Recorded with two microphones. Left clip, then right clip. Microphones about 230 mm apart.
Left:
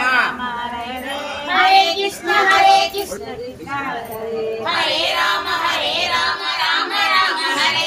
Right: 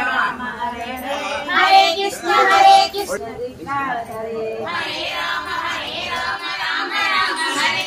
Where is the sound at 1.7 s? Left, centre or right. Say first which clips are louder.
Right 1 dB; centre.